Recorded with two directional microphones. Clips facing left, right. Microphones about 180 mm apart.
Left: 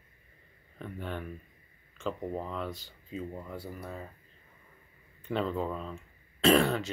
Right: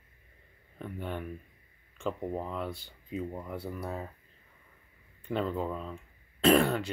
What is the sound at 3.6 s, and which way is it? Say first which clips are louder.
Speech: right 4 dB; 65° right (ahead or behind).